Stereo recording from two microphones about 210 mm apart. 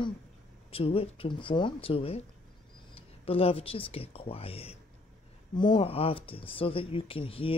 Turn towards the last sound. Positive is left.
turn(degrees=25)  # may be behind; listen again after turning